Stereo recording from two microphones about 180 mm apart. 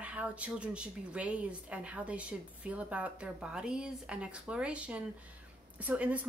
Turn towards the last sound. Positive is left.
turn(degrees=-10)  # may be behind; listen again after turning